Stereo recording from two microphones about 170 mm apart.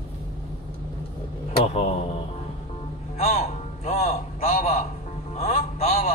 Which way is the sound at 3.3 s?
40° left (ahead or behind).